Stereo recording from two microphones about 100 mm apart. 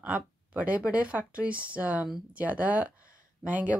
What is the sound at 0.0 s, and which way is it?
Speech, 15° right (ahead or behind).